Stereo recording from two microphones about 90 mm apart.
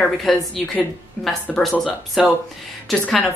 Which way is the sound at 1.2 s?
15° left (ahead or behind).